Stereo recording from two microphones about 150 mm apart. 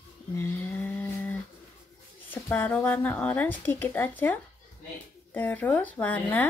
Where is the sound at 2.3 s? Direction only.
10° left (ahead or behind).